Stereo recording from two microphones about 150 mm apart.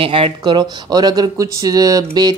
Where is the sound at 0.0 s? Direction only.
35° right (ahead or behind).